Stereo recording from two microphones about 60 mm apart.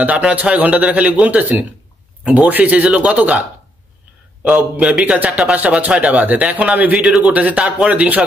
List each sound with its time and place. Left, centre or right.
0.0 s speech: right
4.7 s speech: centre